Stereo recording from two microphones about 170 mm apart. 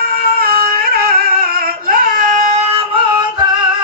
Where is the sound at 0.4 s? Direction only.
60° right (ahead or behind).